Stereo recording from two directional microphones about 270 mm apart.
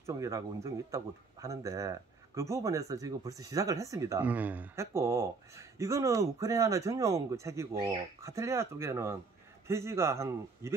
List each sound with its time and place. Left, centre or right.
0.0 s speech: centre